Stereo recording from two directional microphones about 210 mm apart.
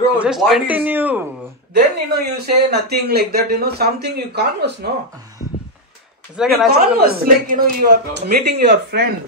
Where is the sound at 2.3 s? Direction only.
50° right (ahead or behind).